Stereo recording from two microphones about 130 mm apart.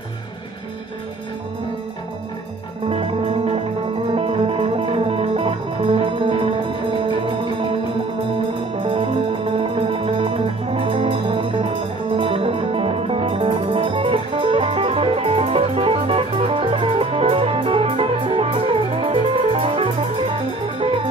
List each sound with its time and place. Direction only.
2.9 s music: 45° right (ahead or behind)
8.7 s music: 40° right (ahead or behind)